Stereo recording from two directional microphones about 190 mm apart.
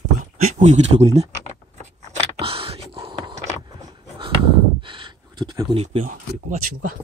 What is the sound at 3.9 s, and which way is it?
Dog, 25° right (ahead or behind).